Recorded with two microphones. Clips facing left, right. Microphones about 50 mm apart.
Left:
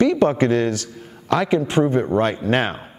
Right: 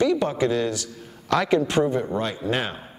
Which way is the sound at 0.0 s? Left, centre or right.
Left.